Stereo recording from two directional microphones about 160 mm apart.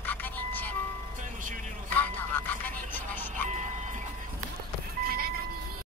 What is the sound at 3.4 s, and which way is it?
Printer, 50° right (ahead or behind).